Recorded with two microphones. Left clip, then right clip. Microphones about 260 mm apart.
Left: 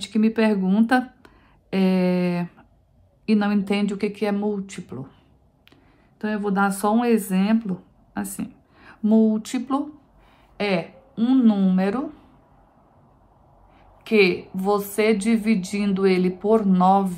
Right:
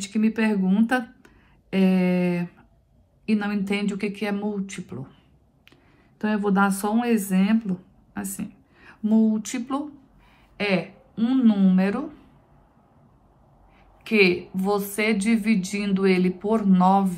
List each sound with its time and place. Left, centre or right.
0.0 s speech: centre
14.0 s a woman's voice: centre